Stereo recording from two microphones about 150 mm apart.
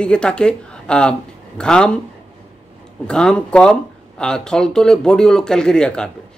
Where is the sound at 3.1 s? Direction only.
5° left (ahead or behind).